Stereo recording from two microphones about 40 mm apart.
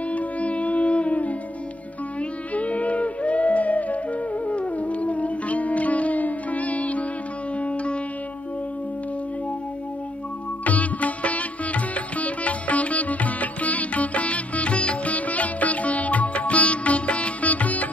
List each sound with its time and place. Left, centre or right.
0.1 s music: left
2.5 s music: left
10.6 s music: left